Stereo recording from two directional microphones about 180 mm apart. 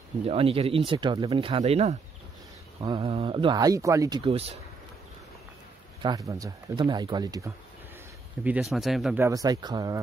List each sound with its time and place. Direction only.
0.2 s speech: 35° right (ahead or behind)
4.2 s speech: 35° right (ahead or behind)
6.0 s speech: 20° right (ahead or behind)
8.5 s speech: 5° right (ahead or behind)
9.2 s speech: 20° right (ahead or behind)